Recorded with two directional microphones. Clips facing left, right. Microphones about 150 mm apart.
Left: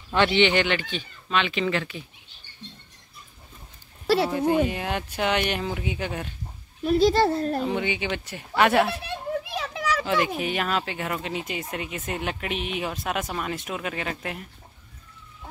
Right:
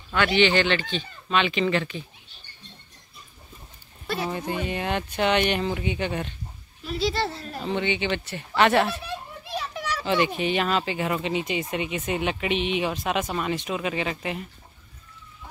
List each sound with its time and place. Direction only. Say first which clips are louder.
0.1 s speech: left 1 dB; 25° left (ahead or behind); by 1.0 s 10° left (ahead or behind)
1.3 s speech: right 2 dB; centre (ahead or behind)
4.5 s speech: left 4 dB; 5° left (ahead or behind)
6.8 s speech: left 7 dB; 50° left (ahead or behind)
7.6 s speech: even; 5° left (ahead or behind)
9.0 s children playing: left 6 dB; 90° left
10.0 s speech: right 6 dB; centre (ahead or behind)